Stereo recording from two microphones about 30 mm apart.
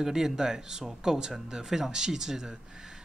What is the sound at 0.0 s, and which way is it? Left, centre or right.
Speech, centre.